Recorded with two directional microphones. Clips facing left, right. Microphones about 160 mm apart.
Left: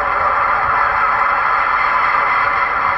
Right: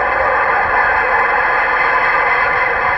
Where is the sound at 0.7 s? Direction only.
60° right (ahead or behind).